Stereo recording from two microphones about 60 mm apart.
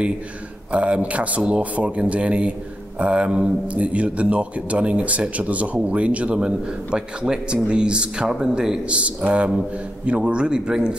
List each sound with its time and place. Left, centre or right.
0.7 s a man's voice: right